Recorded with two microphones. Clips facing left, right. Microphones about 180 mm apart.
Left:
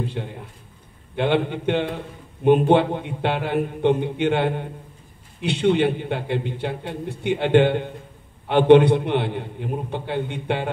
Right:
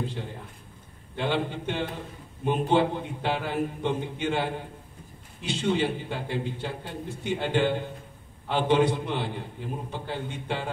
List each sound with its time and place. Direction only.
1.1 s a man's voice: 60° left (ahead or behind)